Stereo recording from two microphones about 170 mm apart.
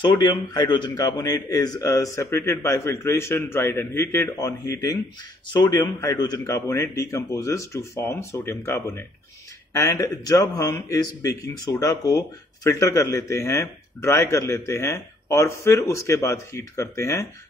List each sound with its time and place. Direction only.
0.1 s speech: 25° left (ahead or behind)